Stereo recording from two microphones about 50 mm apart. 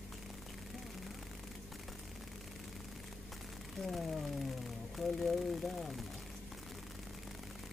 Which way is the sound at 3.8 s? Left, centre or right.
Centre.